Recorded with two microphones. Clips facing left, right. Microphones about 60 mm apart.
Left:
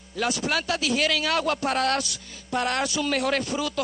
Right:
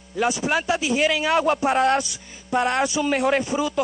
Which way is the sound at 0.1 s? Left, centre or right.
Centre.